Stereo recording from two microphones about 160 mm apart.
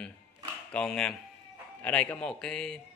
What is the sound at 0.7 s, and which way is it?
Speech, 5° left (ahead or behind).